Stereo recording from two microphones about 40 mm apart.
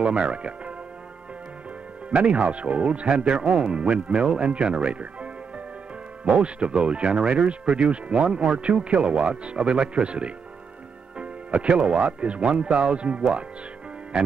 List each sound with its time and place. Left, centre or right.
0.0 s speech: right
2.0 s speech: right
11.1 s music: right
11.8 s speech: right